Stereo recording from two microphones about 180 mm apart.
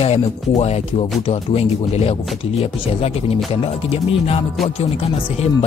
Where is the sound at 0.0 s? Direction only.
35° left (ahead or behind).